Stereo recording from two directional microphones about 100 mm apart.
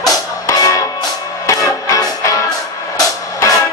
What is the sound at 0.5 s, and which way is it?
Music, 35° left (ahead or behind).